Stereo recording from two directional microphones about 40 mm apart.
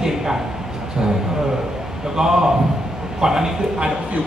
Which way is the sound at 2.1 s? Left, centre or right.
Centre.